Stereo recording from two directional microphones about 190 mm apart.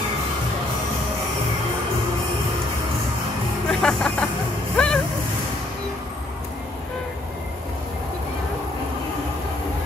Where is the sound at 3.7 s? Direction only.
5° left (ahead or behind).